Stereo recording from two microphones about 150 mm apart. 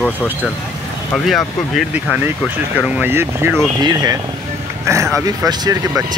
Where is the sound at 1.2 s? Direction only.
Centre (ahead or behind).